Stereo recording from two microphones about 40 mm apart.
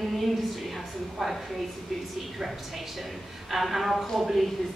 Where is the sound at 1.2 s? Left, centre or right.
Centre.